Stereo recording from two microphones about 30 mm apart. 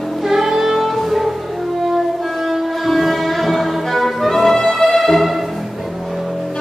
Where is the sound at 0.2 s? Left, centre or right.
Centre.